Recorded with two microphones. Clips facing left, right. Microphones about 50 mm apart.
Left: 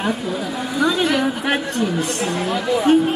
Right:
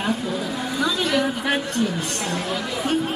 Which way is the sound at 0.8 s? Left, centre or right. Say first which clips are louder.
Left 6 dB; centre.